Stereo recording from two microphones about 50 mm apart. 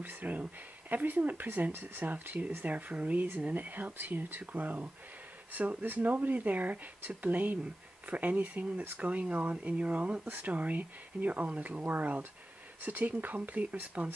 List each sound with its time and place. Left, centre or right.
0.0 s speech: right